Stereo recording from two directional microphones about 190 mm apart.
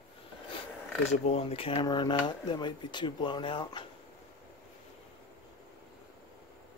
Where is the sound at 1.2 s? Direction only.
30° left (ahead or behind).